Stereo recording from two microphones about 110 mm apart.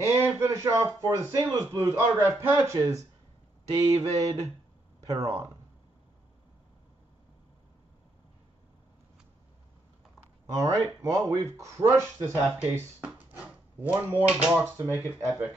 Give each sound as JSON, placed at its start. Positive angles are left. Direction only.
{"t": 0.0, "sound": "speech", "side_deg": -25}
{"t": 1.5, "sound": "speech", "side_deg": -30}
{"t": 3.7, "sound": "a sound", "side_deg": -30}
{"t": 5.0, "sound": "speech", "side_deg": -30}
{"t": 10.5, "sound": "speech", "side_deg": -25}